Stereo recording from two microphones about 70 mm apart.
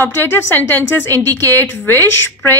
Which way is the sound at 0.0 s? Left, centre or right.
Left.